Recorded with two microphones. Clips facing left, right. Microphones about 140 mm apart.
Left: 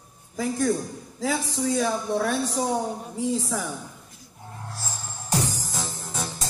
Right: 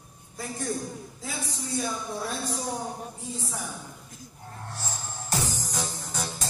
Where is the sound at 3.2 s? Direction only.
90° left.